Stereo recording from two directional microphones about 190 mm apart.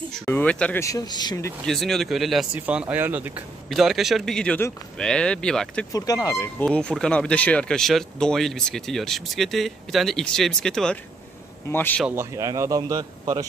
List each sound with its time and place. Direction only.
0.1 s speech: 5° left (ahead or behind)
1.7 s speech: centre (ahead or behind)
5.9 s speech: 20° left (ahead or behind)
6.6 s speech: 5° left (ahead or behind)
12.2 s a man's voice: 15° right (ahead or behind)